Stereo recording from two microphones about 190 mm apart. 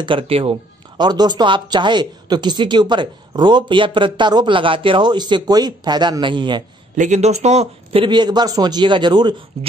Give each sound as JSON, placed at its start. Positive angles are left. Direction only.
{"t": 0.0, "sound": "speech", "side_deg": -30}
{"t": 7.0, "sound": "speech", "side_deg": -35}